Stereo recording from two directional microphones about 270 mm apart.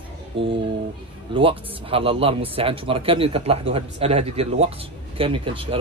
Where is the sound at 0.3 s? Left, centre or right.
Centre.